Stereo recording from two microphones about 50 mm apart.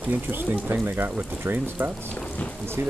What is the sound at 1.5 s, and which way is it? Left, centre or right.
Speech, right.